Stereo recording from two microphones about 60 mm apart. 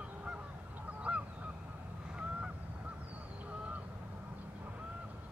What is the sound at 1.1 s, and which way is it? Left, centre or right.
Honk, centre.